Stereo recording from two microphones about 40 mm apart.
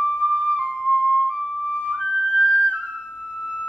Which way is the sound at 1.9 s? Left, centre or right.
Right.